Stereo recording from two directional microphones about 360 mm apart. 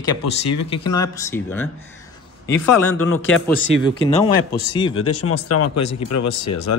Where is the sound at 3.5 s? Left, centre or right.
Centre.